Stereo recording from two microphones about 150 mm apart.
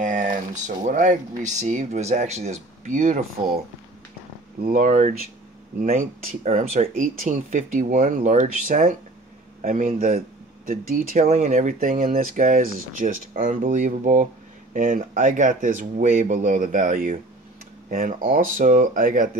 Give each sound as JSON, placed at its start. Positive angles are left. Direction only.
{"t": 0.0, "sound": "speech", "side_deg": -60}
{"t": 4.6, "sound": "speech", "side_deg": -60}
{"t": 11.2, "sound": "speech", "side_deg": -45}